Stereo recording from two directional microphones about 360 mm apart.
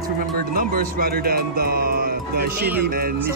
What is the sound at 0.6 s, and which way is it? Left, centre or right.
Speech, right.